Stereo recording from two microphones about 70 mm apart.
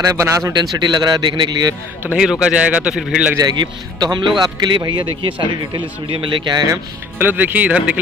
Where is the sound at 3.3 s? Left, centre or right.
Right.